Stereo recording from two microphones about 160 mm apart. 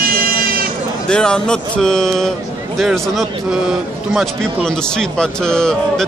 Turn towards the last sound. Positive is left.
turn(degrees=5)  # may be behind; listen again after turning